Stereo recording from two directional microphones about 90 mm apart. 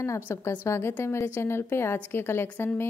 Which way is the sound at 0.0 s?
30° left (ahead or behind).